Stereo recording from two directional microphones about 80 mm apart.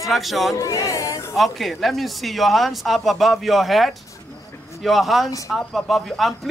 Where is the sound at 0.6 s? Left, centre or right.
Left.